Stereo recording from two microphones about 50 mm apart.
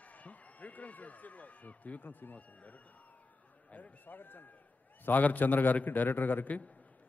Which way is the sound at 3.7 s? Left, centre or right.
Left.